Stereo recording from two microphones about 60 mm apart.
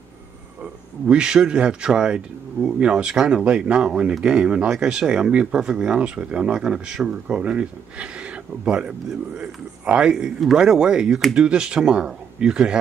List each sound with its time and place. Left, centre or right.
1.0 s speech: centre